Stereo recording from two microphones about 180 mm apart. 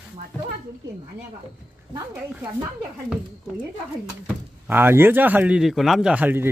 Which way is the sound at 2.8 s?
5° right (ahead or behind).